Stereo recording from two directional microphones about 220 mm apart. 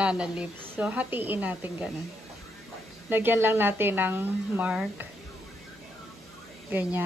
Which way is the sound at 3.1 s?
10° right (ahead or behind).